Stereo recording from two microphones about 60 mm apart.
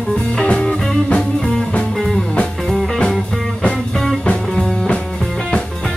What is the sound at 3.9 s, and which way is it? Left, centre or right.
Music, centre.